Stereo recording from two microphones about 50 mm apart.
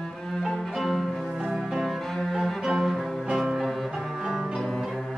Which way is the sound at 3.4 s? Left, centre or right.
Centre.